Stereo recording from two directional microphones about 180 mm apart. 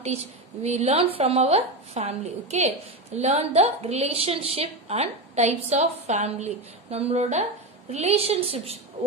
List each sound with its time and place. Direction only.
0.0 s speech: 35° right (ahead or behind)